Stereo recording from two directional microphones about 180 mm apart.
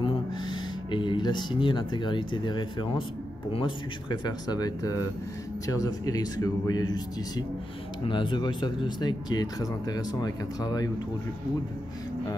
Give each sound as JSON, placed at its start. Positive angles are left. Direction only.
{"t": 0.0, "sound": "speech", "side_deg": 25}